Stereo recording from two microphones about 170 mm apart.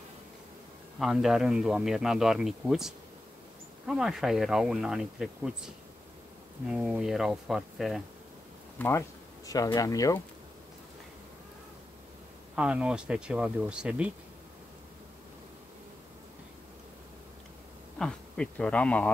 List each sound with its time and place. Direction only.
0.9 s speech: centre (ahead or behind)
6.7 s speech: 5° right (ahead or behind)
8.7 s speech: 10° left (ahead or behind)
12.5 s speech: 5° right (ahead or behind)
17.9 s speech: 5° left (ahead or behind)